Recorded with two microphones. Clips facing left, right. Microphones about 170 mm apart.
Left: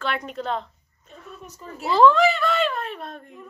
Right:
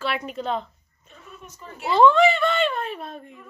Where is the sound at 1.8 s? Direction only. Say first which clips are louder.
Even; centre (ahead or behind).